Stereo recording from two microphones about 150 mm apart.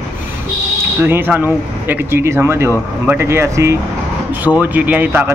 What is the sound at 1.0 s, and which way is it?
A man's voice, 15° right (ahead or behind).